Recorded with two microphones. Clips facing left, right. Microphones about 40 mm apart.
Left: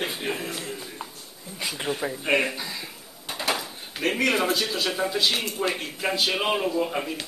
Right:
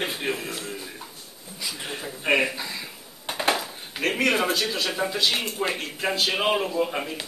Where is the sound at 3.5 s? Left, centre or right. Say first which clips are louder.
Right 1 dB; centre.